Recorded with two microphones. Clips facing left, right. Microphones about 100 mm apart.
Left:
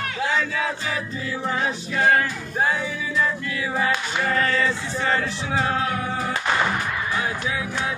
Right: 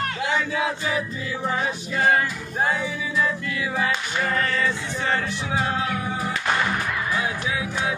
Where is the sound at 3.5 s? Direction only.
40° left (ahead or behind).